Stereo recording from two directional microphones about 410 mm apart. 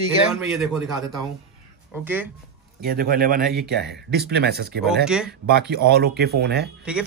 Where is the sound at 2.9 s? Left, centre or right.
Right.